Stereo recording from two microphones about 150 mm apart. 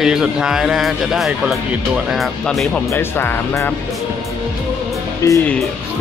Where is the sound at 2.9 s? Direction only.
15° left (ahead or behind).